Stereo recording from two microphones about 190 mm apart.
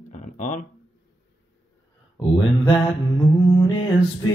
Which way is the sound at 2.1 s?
20° left (ahead or behind).